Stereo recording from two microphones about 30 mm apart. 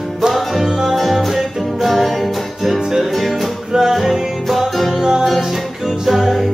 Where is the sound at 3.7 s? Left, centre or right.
Centre.